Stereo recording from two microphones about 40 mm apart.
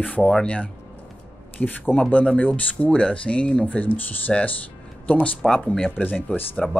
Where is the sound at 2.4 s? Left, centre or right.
Left.